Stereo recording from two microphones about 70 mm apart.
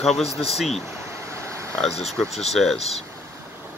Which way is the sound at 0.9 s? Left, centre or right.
Right.